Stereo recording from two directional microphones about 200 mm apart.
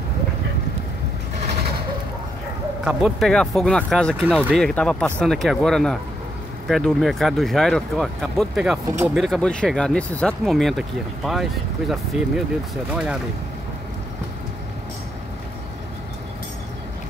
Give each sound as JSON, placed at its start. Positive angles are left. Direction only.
{"t": 2.8, "sound": "speech", "side_deg": -5}
{"t": 8.8, "sound": "speech", "side_deg": -10}
{"t": 9.1, "sound": "speech", "side_deg": 0}